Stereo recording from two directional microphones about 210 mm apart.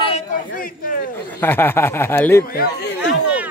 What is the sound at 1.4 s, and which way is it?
Speech, 10° left (ahead or behind).